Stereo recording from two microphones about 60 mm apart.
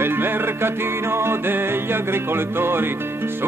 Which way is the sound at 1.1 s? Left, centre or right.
Right.